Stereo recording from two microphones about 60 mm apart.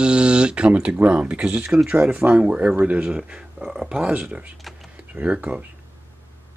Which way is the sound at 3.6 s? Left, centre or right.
Centre.